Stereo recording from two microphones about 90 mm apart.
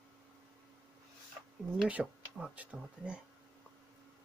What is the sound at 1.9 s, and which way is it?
Speech, 10° right (ahead or behind).